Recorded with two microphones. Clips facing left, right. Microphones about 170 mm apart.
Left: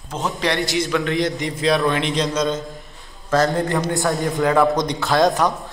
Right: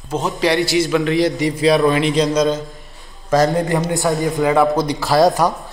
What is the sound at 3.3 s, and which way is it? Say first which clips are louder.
Speech: right 3 dB; 20° right (ahead or behind).